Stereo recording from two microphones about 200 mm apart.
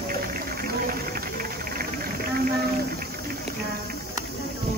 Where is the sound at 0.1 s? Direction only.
45° right (ahead or behind).